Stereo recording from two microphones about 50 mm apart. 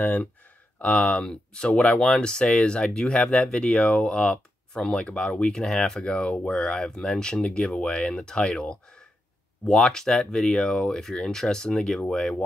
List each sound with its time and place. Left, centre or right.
0.0 s speech: left